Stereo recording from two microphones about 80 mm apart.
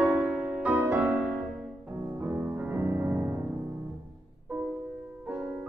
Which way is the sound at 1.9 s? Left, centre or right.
Right.